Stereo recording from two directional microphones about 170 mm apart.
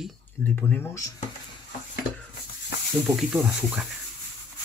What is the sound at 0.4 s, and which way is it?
Speech, 10° left (ahead or behind).